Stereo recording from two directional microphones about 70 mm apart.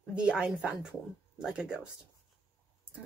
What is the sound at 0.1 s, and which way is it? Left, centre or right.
Speech, centre.